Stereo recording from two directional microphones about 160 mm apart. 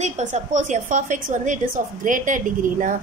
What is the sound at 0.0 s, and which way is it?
A woman's voice, 50° right (ahead or behind).